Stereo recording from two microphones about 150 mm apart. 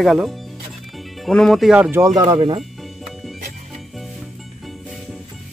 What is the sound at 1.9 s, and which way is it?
Speech, 25° right (ahead or behind).